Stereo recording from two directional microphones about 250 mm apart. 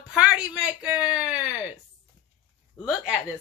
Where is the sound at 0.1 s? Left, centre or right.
Centre.